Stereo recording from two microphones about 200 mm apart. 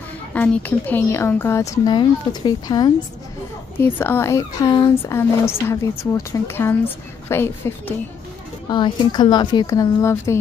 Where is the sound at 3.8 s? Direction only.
10° left (ahead or behind).